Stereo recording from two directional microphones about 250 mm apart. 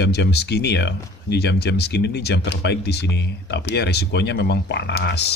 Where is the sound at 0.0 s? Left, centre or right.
Left.